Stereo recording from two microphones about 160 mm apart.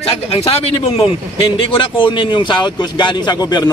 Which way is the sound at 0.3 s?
35° left (ahead or behind).